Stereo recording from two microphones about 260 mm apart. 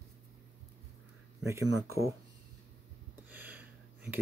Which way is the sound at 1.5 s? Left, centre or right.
Centre.